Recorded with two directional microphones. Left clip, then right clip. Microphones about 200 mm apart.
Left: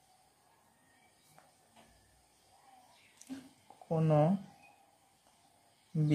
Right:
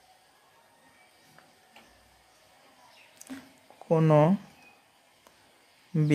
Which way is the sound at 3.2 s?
35° right (ahead or behind).